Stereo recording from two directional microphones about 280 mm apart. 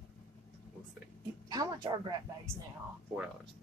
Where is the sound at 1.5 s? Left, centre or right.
Centre.